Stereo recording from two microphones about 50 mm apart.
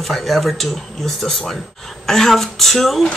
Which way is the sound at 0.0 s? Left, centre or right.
Centre.